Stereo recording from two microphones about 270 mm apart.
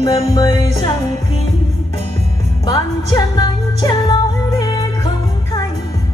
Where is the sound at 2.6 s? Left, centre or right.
Centre.